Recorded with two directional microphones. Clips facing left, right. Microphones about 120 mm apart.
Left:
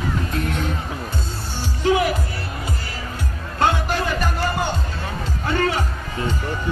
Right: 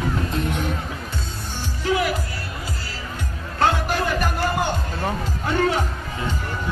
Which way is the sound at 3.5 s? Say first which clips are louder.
Even; centre (ahead or behind).